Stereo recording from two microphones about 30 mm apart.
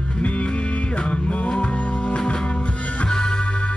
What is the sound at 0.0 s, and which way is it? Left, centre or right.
Music, left.